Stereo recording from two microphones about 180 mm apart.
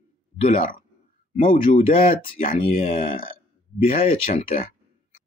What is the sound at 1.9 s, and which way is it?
Speech, 30° left (ahead or behind).